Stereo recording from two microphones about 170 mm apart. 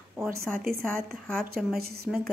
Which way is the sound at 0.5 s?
Centre (ahead or behind).